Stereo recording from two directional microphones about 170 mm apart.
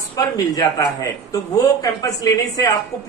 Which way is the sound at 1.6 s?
20° left (ahead or behind).